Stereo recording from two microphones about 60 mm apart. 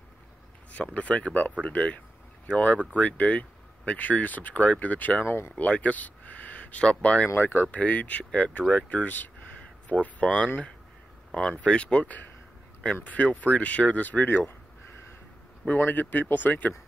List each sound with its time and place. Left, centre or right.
0.7 s speech: left
5.2 s speech: left
5.6 s speech: left
7.2 s speech: left
15.7 s speech: left